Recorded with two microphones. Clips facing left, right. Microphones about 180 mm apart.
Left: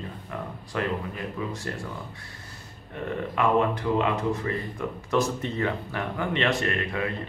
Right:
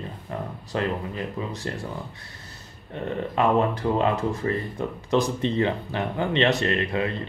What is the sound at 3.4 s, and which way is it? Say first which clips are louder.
Speech: right 2 dB; 35° right (ahead or behind).